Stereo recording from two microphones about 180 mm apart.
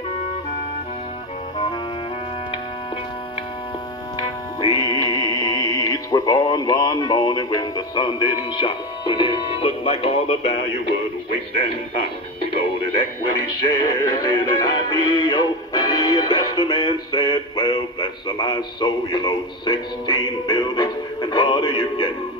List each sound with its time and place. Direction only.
4.2 s music: 25° left (ahead or behind)
13.7 s music: 25° left (ahead or behind)